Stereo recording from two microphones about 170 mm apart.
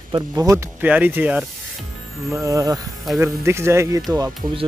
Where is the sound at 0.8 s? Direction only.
10° right (ahead or behind).